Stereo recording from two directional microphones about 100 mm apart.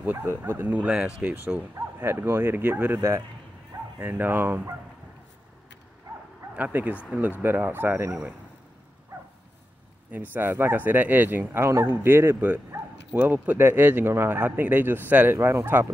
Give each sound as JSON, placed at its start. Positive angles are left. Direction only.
{"t": 0.0, "sound": "speech", "side_deg": -20}
{"t": 4.0, "sound": "speech", "side_deg": -20}
{"t": 6.5, "sound": "speech", "side_deg": -15}
{"t": 10.3, "sound": "speech", "side_deg": -20}